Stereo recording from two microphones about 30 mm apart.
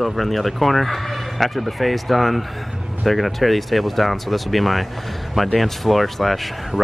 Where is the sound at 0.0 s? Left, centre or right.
Centre.